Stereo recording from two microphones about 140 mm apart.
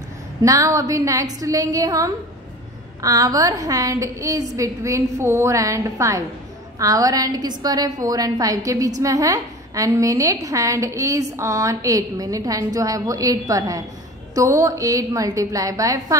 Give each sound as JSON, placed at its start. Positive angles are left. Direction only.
{"t": 0.4, "sound": "a woman's voice", "side_deg": -25}